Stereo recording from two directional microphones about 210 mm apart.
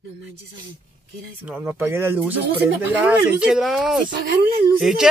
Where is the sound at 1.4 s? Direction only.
10° right (ahead or behind).